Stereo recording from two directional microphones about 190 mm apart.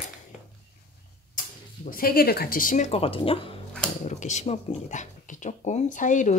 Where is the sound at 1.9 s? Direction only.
50° left (ahead or behind).